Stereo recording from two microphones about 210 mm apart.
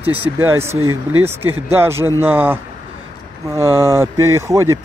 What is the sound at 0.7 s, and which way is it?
Speech, 80° right.